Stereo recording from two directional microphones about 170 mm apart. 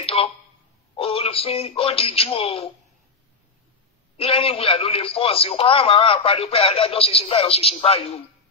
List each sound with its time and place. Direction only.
0.0 s a sound: 35° left (ahead or behind)
0.9 s speech: 35° left (ahead or behind)
4.2 s speech: 35° left (ahead or behind)